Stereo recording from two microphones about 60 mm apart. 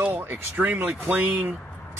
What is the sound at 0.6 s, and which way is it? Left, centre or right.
Speech, centre.